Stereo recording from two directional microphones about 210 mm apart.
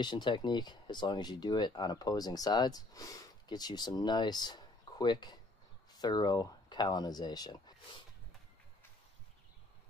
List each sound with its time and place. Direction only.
0.0 s speech: 20° left (ahead or behind)